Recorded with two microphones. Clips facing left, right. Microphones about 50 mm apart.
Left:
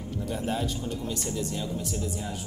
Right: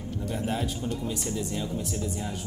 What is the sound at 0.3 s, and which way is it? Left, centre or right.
Speech, centre.